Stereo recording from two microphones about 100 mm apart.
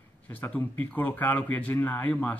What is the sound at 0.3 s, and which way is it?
Speech, 15° left (ahead or behind).